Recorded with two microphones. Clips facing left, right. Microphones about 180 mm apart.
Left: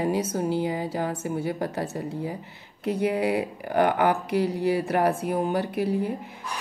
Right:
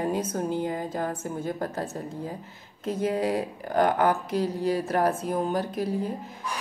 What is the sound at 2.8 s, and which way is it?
Speech, 65° left (ahead or behind).